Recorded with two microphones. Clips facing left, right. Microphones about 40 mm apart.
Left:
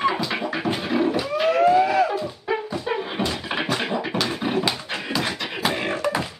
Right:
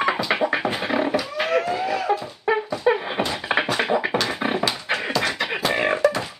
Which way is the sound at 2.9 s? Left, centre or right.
Right.